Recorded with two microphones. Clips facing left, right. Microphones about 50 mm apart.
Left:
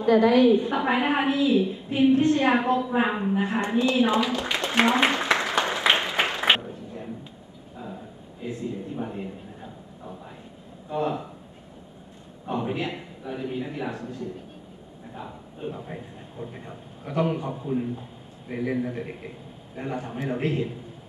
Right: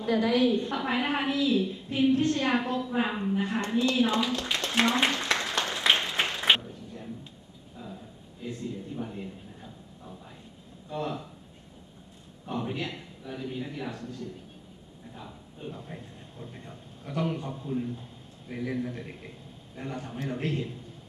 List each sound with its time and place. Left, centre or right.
0.1 s a man's voice: centre
0.7 s a woman's voice: centre
7.7 s a sound: centre
12.4 s a man's voice: centre